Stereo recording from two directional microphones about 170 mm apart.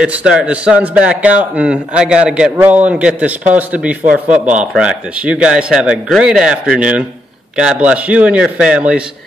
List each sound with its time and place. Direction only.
0.0 s a man's voice: 5° right (ahead or behind)